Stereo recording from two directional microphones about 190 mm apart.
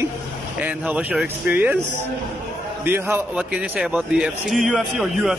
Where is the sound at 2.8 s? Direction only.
10° right (ahead or behind).